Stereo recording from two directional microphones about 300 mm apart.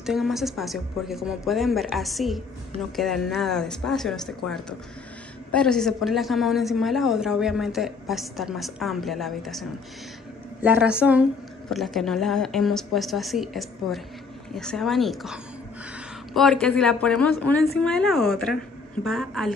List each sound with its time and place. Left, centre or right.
0.0 s speech: centre
16.3 s speech: centre